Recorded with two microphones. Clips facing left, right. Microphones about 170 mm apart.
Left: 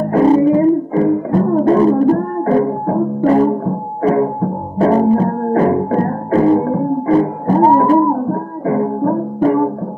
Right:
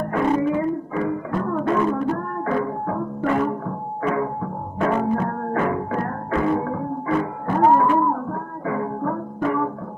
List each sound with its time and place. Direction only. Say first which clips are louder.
0.1 s music: left 10 dB; 35° left (ahead or behind)